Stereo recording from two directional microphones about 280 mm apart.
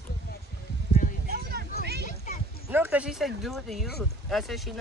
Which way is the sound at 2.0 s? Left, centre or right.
Left.